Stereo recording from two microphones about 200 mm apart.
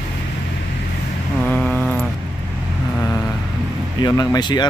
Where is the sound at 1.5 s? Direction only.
5° left (ahead or behind).